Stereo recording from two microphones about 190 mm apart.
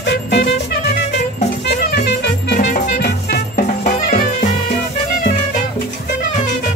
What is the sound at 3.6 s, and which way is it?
Music, 45° left (ahead or behind).